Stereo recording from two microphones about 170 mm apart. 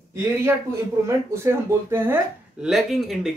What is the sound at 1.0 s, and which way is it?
Speech, 15° right (ahead or behind).